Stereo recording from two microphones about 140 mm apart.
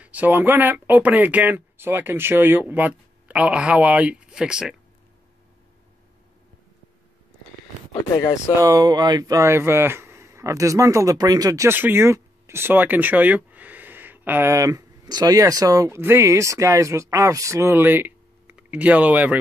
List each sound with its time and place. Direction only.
0.0 s speech: 10° right (ahead or behind)
7.9 s speech: 25° left (ahead or behind)
8.5 s speech: 25° right (ahead or behind)